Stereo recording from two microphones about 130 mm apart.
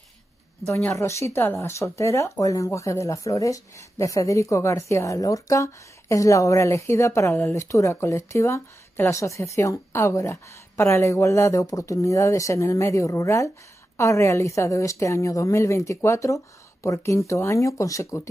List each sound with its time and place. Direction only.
0.9 s speech: 20° left (ahead or behind)